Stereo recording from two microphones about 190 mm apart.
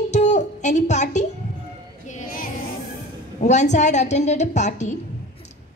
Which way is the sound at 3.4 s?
40° left (ahead or behind).